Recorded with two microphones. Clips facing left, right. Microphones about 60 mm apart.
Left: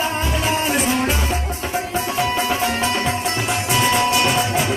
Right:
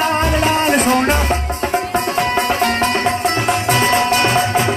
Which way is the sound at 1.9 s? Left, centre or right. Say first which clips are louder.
Right 1 dB; right.